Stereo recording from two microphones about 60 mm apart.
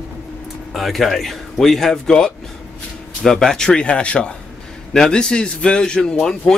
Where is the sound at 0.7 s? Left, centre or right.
Centre.